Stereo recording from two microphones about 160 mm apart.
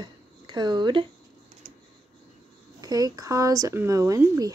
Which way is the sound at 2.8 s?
25° right (ahead or behind).